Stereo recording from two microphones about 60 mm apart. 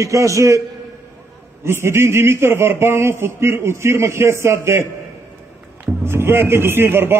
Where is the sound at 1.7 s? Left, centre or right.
Right.